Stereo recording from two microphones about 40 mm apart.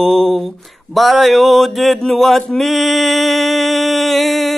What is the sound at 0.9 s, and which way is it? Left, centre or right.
Mantra, centre.